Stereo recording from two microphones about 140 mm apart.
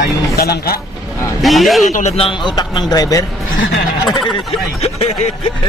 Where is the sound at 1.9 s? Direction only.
50° left (ahead or behind).